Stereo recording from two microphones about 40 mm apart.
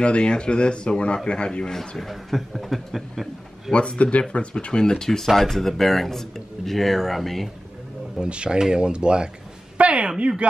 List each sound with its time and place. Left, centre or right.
0.0 s a man's voice: left
2.0 s speech: centre
3.7 s a man's voice: left
5.2 s speech: centre
8.2 s speech: right